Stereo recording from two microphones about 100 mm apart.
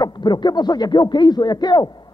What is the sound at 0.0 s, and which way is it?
A man's voice, 45° left (ahead or behind).